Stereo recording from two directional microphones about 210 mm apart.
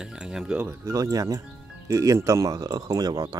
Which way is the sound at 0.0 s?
5° right (ahead or behind).